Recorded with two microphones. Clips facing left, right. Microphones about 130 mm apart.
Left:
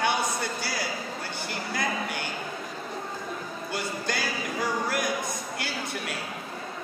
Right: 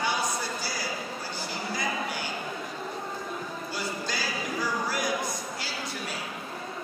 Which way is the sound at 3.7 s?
60° left (ahead or behind).